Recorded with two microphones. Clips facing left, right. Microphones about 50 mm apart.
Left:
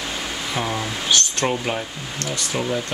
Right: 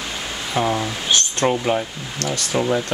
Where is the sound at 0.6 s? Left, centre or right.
Centre.